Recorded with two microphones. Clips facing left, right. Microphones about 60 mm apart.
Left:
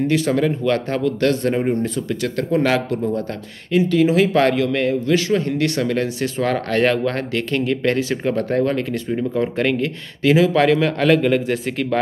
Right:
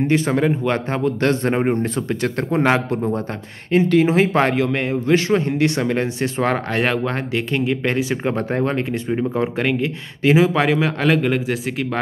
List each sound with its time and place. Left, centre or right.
0.0 s speech: right
6.7 s speech: centre
9.6 s speech: centre
10.2 s speech: centre